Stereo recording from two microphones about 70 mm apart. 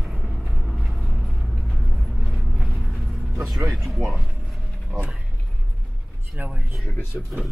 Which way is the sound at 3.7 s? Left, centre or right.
Centre.